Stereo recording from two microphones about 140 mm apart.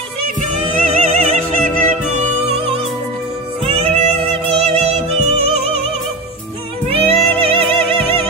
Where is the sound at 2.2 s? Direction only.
45° right (ahead or behind).